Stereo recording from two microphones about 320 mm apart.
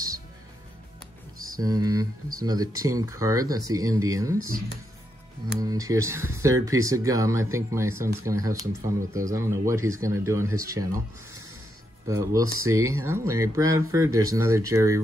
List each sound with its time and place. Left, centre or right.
1.6 s speech: centre
5.5 s speech: centre
12.1 s speech: centre